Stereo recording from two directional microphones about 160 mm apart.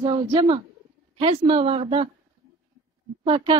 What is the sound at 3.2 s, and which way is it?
Speech, 35° right (ahead or behind).